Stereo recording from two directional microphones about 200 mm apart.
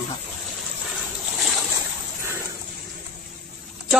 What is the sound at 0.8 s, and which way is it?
Boat, centre (ahead or behind).